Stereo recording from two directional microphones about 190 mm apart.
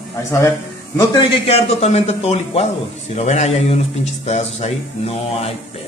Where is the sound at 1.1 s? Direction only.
30° left (ahead or behind).